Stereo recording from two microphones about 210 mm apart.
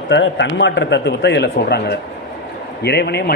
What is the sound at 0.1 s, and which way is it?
A man's voice, 60° left (ahead or behind).